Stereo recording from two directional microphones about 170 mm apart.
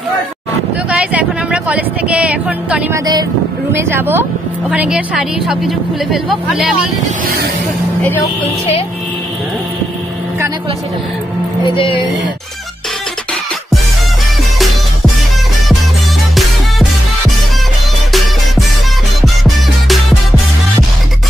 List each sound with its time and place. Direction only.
0.8 s speech: 5° right (ahead or behind)
11.6 s speech: 30° left (ahead or behind)
19.2 s music: centre (ahead or behind)